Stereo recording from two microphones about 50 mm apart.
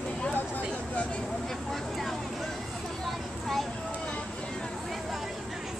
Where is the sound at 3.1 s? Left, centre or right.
Centre.